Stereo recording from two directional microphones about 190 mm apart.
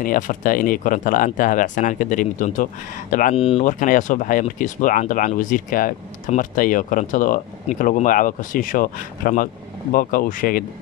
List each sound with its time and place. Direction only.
0.0 s speech: 45° left (ahead or behind)
3.3 s speech: 30° left (ahead or behind)
3.6 s speech: 45° left (ahead or behind)